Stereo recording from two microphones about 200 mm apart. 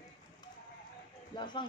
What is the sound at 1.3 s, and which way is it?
Speech, 25° left (ahead or behind).